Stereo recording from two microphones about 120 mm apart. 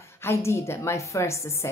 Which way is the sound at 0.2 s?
20° left (ahead or behind).